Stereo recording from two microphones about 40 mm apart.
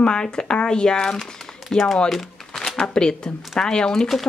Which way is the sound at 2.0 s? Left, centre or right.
Centre.